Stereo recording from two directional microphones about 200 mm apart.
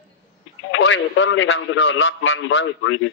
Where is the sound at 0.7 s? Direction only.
75° left (ahead or behind).